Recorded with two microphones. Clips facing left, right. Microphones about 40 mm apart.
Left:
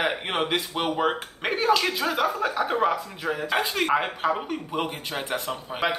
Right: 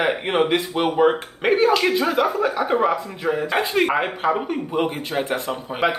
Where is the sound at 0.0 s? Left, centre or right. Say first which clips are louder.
Right 6 dB; centre.